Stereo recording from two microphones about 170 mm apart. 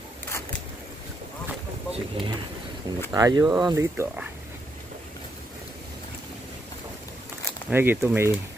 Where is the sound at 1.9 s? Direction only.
35° right (ahead or behind).